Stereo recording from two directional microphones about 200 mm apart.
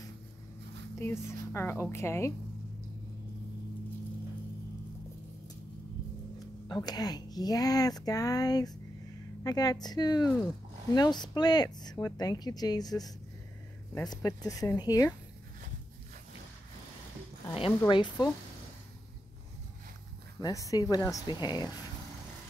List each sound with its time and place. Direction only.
0.9 s a woman's voice: 15° left (ahead or behind)
6.7 s a woman's voice: 20° left (ahead or behind)
17.5 s speech: 25° left (ahead or behind)
20.3 s speech: 20° left (ahead or behind)